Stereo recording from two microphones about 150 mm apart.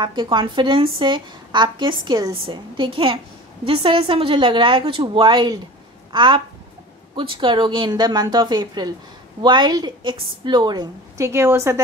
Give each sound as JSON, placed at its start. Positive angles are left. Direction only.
{"t": 0.0, "sound": "a woman's voice", "side_deg": -30}